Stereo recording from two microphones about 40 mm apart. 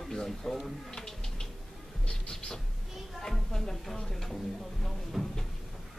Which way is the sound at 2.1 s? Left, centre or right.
Centre.